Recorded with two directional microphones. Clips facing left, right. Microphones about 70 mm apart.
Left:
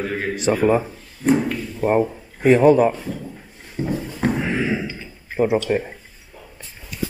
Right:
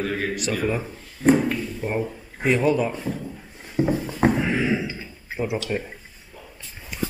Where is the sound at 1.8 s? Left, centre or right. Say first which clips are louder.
Left 8 dB; left.